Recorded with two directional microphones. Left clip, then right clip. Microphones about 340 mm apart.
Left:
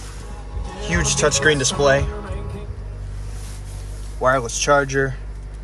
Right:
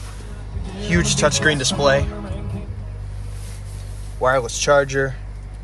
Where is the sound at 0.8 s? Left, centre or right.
Centre.